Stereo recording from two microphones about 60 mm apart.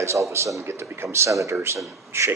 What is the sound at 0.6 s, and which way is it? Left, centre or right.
Speech, right.